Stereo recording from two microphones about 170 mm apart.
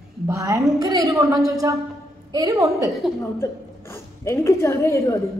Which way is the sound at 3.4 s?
15° left (ahead or behind).